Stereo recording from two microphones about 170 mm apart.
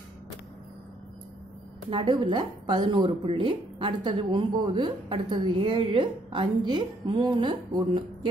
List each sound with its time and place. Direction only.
1.9 s a woman's voice: 30° right (ahead or behind)